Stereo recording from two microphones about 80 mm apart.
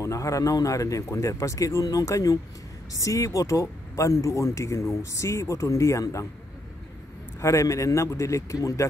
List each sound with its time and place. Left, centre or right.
0.0 s speech: left
7.3 s speech: left